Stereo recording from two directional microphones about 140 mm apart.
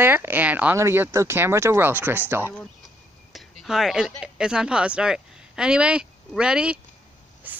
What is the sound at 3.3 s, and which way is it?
Speech, centre (ahead or behind).